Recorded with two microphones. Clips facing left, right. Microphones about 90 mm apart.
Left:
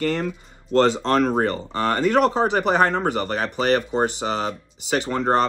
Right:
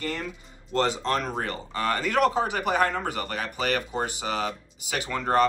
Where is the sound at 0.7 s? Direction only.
40° left (ahead or behind).